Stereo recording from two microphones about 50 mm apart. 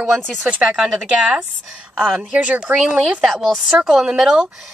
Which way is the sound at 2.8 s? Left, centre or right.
Centre.